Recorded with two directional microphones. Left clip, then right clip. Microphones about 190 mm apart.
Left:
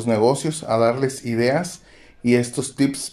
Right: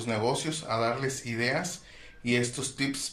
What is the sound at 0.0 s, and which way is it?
Speech, 40° left (ahead or behind).